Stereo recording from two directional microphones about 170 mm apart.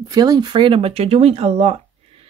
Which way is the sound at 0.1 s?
25° right (ahead or behind).